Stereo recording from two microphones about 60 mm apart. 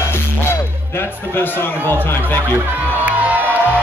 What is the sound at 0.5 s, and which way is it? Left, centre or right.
Music, left.